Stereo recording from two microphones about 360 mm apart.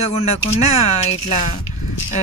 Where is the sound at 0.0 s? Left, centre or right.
Centre.